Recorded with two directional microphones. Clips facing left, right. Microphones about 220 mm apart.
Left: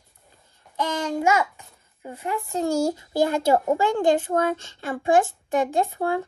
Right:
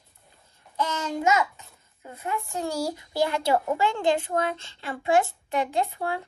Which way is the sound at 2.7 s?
45° left (ahead or behind).